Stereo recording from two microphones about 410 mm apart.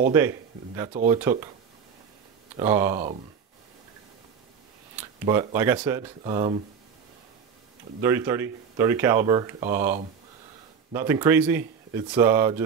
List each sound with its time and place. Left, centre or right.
0.1 s speech: centre
2.5 s speech: centre
5.2 s speech: centre
8.0 s speech: centre